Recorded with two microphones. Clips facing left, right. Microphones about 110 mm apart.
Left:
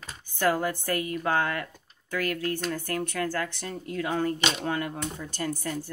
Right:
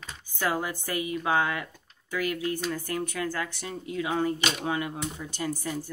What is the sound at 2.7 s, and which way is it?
Speech, 50° left (ahead or behind).